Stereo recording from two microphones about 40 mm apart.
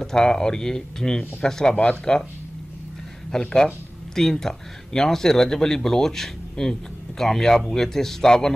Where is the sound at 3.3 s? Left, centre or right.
Centre.